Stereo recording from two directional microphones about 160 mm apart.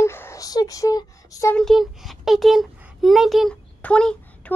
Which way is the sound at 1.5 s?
Centre (ahead or behind).